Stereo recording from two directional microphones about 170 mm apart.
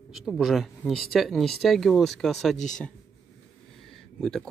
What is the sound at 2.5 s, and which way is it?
Speech, 45° left (ahead or behind).